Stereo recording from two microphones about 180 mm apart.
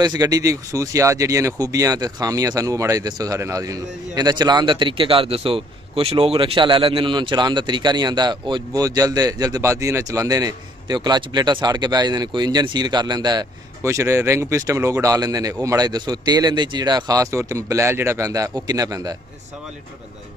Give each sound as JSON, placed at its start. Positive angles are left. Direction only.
{"t": 0.0, "sound": "speech", "side_deg": -20}